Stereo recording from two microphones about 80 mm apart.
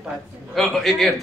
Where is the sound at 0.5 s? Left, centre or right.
Centre.